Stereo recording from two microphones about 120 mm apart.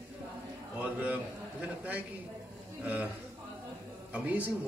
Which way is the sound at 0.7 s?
15° right (ahead or behind).